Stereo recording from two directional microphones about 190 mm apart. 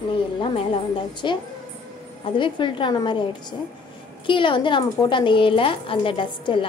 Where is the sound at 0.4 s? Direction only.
25° left (ahead or behind).